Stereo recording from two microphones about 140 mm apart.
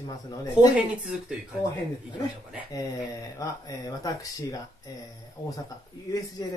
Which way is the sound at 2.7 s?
25° left (ahead or behind).